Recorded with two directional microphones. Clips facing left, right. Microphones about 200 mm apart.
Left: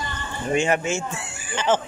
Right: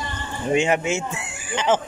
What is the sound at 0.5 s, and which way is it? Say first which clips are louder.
Speech: right 1 dB; 15° right (ahead or behind).